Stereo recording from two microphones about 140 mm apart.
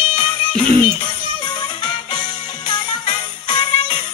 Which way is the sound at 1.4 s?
30° left (ahead or behind).